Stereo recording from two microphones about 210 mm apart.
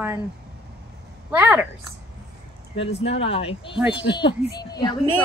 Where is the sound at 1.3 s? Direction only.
5° right (ahead or behind).